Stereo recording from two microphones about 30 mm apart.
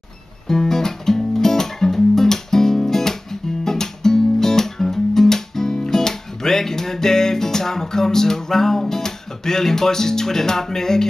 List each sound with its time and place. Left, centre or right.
0.5 s music: centre